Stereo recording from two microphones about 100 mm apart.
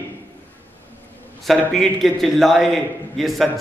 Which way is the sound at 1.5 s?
Centre (ahead or behind).